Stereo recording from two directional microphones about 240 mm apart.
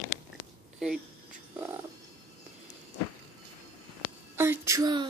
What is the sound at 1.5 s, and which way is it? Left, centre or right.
Frog, centre.